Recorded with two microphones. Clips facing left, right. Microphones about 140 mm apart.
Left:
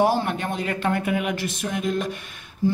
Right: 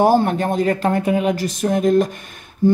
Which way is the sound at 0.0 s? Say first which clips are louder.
Right 6 dB; 45° right (ahead or behind).